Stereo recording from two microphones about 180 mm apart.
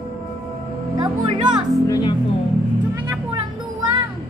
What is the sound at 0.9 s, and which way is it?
Speech, 20° right (ahead or behind).